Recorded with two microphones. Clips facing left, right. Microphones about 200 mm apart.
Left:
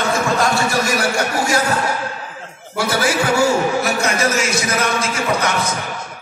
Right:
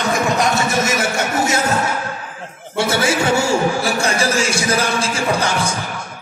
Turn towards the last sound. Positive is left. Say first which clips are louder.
# even
turn(degrees=-30)  # may be behind; listen again after turning